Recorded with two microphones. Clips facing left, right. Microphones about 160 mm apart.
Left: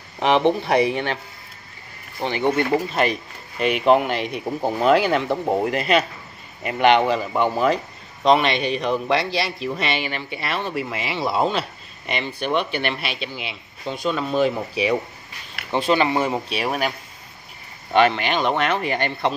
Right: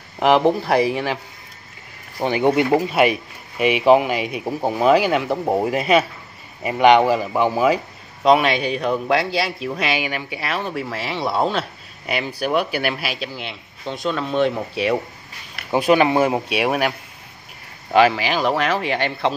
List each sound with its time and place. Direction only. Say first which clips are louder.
0.2 s a man's voice: right 2 dB; 5° right (ahead or behind)
15.7 s speech: right 4 dB; 10° right (ahead or behind)
17.9 s a man's voice: right 2 dB; 5° right (ahead or behind)